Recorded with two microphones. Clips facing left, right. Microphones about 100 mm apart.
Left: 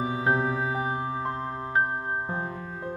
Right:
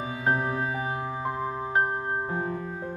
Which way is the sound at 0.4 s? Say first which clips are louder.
Left 1 dB; 30° left (ahead or behind).